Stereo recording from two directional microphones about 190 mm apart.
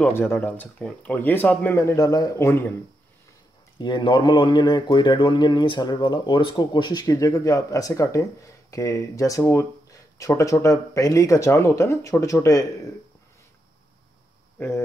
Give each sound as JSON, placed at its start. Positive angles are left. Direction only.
{"t": 0.0, "sound": "a man's voice", "side_deg": 10}
{"t": 3.7, "sound": "a man's voice", "side_deg": 25}
{"t": 14.6, "sound": "a man's voice", "side_deg": 10}